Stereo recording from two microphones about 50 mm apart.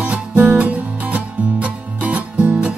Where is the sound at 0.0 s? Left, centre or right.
Right.